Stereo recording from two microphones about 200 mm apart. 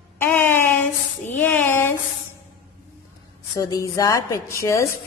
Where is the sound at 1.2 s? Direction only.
10° left (ahead or behind).